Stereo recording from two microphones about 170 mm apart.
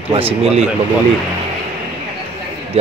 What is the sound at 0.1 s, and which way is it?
Speech, 35° right (ahead or behind).